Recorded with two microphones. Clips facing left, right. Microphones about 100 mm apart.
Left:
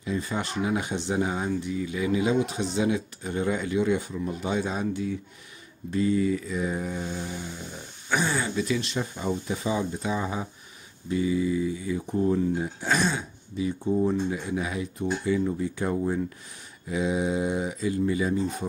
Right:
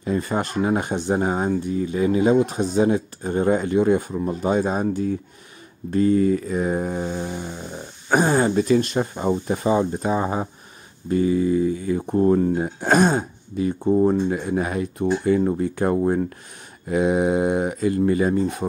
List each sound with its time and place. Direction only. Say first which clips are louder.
0.0 s speech: right 6 dB; 50° right (ahead or behind)